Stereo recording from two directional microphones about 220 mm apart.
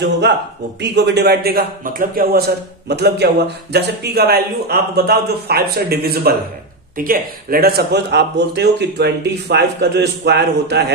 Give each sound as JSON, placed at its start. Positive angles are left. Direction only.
{"t": 0.7, "sound": "speech", "side_deg": -50}